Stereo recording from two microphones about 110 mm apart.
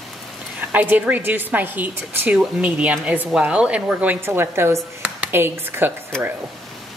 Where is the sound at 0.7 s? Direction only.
15° right (ahead or behind).